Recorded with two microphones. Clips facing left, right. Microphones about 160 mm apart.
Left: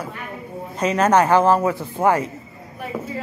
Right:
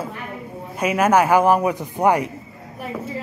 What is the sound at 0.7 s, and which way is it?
Speech, 10° right (ahead or behind).